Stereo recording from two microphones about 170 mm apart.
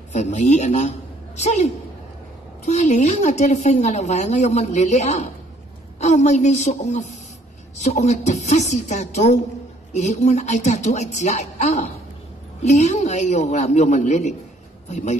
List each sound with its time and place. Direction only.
0.1 s a woman's voice: 45° left (ahead or behind)